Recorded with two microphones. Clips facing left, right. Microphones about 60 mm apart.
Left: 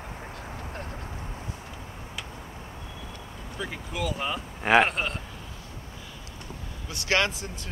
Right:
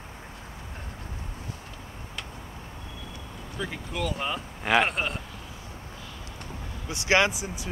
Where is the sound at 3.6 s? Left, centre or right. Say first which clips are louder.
Right 1 dB; centre.